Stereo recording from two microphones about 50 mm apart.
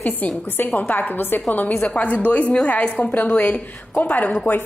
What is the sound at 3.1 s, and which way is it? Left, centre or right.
A woman's voice, left.